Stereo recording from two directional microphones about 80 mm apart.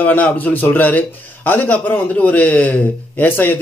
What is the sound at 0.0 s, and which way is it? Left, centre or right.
A man's voice, left.